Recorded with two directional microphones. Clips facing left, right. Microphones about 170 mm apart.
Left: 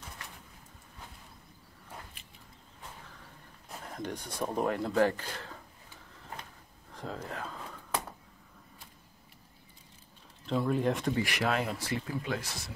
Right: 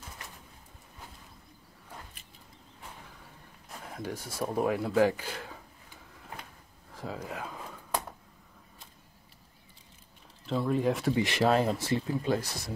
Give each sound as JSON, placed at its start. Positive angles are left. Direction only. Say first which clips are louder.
{"t": 3.2, "sound": "a sound", "louder": "right 1 dB", "side_deg": -5}
{"t": 6.9, "sound": "speech", "louder": "right 1 dB", "side_deg": -5}
{"t": 10.4, "sound": "speech", "louder": "right 1 dB", "side_deg": 0}
{"t": 11.1, "sound": "speech", "louder": "right 5 dB", "side_deg": -25}